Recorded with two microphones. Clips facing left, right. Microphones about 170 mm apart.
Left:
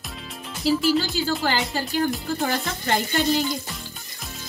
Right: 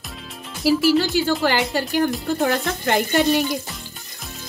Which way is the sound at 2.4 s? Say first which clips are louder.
Right 5 dB; 65° right (ahead or behind).